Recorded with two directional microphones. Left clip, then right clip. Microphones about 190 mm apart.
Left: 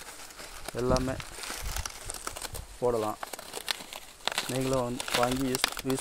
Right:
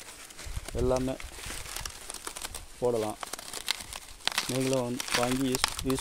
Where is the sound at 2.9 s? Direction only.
25° right (ahead or behind).